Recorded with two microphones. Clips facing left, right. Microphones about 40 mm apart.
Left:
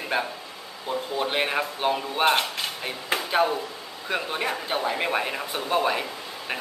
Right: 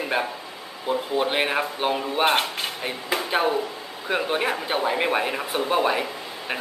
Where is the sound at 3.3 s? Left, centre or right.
Centre.